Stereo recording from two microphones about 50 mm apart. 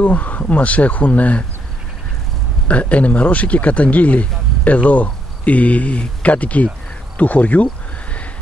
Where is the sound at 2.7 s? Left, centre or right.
Left.